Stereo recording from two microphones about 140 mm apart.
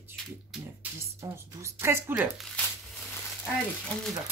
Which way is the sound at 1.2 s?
20° right (ahead or behind).